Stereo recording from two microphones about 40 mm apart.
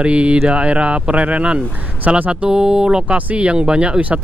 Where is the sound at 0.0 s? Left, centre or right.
Right.